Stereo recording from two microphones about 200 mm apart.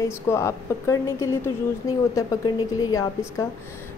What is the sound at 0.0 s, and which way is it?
A woman's voice, 15° left (ahead or behind).